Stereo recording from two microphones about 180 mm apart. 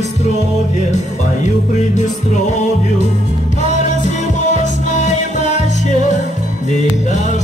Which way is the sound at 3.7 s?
40° left (ahead or behind).